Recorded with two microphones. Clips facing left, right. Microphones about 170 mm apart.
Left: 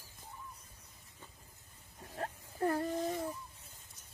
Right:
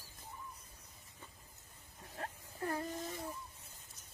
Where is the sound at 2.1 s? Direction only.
40° left (ahead or behind).